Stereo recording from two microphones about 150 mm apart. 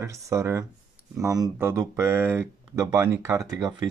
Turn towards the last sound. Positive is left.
turn(degrees=-25)  # may be behind; listen again after turning